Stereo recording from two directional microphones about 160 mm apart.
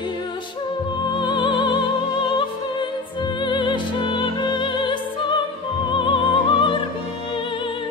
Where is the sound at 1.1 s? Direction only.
30° left (ahead or behind).